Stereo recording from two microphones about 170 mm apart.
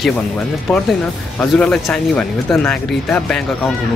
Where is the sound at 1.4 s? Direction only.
5° left (ahead or behind).